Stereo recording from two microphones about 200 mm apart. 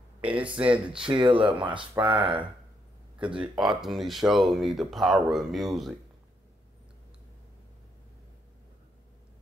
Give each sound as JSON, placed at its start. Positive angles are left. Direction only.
{"t": 0.2, "sound": "speech", "side_deg": -5}
{"t": 1.0, "sound": "speech", "side_deg": -25}
{"t": 2.0, "sound": "speech", "side_deg": -5}
{"t": 3.3, "sound": "speech", "side_deg": 0}